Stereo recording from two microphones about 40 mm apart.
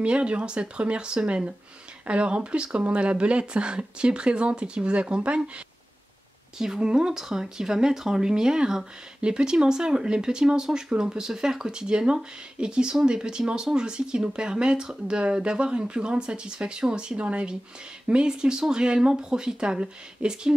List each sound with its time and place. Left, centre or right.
0.0 s speech: right
6.6 s speech: centre